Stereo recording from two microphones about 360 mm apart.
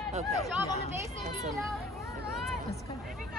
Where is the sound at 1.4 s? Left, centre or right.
Centre.